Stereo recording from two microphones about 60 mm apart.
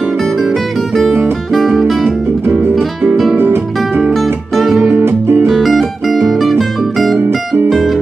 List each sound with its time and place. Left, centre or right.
1.5 s music: centre
3.3 s music: right
4.1 s music: centre
4.8 s music: right
5.5 s music: centre
7.2 s music: right
7.7 s music: centre